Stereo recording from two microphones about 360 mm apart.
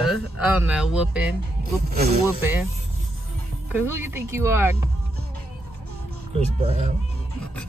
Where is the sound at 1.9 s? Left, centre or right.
Right.